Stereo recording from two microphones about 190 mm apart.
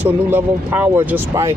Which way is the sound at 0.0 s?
10° right (ahead or behind).